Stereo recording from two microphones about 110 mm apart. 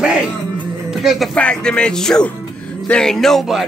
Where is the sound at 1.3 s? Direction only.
10° left (ahead or behind).